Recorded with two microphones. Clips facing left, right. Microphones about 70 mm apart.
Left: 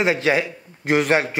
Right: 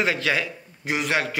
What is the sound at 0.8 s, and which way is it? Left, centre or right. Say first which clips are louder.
Speech: left 7 dB; left.